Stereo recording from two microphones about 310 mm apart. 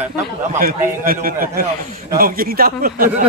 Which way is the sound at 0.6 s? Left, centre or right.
Right.